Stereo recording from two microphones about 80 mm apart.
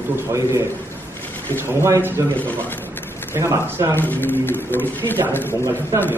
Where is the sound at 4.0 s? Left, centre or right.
Left.